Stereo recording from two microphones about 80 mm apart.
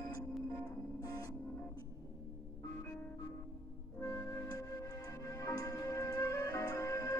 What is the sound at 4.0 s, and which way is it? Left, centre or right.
Music, left.